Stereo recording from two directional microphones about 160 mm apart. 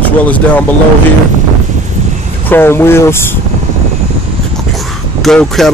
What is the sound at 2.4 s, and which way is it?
Speech, 15° left (ahead or behind).